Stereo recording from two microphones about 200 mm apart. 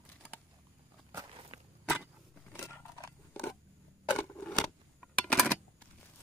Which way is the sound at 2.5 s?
15° left (ahead or behind).